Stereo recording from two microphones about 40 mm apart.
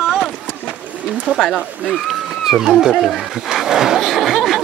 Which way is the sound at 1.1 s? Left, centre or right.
Right.